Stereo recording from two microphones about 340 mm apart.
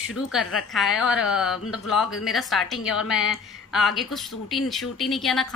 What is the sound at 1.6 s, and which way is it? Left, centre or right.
Speech, left.